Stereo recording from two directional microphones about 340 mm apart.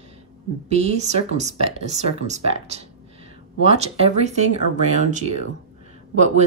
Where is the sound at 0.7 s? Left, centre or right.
Centre.